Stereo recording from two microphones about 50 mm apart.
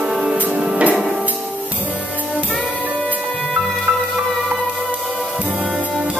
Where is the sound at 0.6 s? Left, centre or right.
Right.